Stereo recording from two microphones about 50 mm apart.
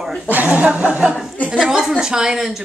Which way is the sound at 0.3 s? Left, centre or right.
Right.